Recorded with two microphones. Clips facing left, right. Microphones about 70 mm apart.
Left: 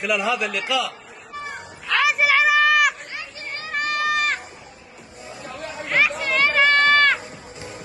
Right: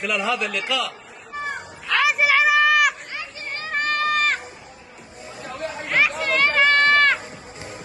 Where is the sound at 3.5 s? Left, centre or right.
Right.